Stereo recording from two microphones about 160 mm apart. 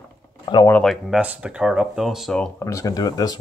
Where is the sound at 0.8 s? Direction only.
Centre (ahead or behind).